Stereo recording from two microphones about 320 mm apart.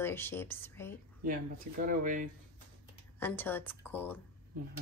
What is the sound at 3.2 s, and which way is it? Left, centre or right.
A woman's voice, centre.